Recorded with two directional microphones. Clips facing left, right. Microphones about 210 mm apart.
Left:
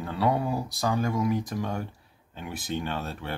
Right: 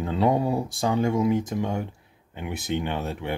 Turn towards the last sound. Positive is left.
turn(degrees=-20)  # may be behind; listen again after turning